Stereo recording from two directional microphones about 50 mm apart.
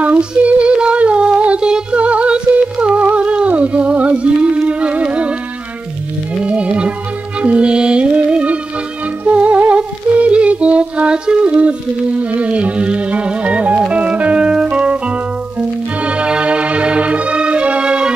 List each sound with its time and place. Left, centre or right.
0.2 s music: right
6.4 s music: right
16.1 s music: right